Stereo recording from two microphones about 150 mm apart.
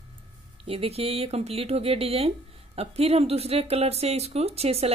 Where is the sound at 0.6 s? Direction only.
40° right (ahead or behind).